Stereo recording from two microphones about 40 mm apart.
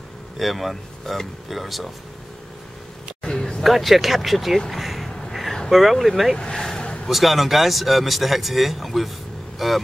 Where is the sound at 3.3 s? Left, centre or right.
Centre.